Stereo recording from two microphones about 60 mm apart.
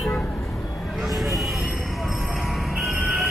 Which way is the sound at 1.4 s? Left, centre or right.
Centre.